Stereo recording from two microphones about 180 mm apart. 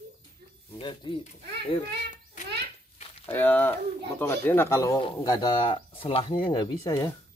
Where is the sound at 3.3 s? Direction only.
10° left (ahead or behind).